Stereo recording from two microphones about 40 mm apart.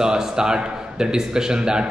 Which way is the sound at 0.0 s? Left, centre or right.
Centre.